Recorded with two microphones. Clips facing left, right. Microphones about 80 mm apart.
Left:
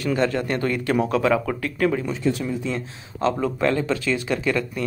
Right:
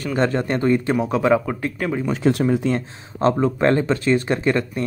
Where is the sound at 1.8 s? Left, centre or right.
Centre.